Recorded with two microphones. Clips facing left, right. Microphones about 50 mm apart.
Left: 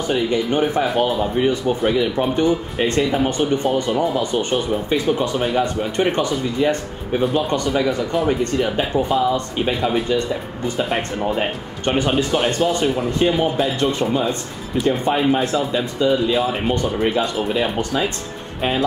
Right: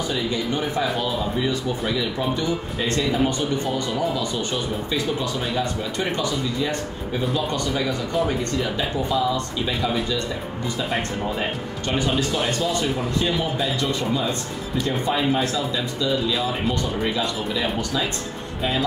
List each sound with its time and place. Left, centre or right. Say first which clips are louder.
0.1 s speech: left 9 dB; left